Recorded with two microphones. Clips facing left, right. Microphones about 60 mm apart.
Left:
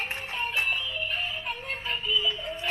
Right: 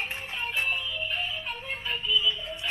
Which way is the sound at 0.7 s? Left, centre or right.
Left.